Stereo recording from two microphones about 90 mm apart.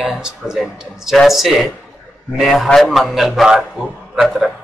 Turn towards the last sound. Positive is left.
turn(degrees=0)  # may be behind; listen again after turning